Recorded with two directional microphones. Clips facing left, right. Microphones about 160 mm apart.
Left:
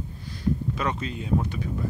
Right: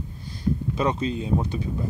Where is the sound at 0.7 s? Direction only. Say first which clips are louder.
Right 5 dB; 25° right (ahead or behind).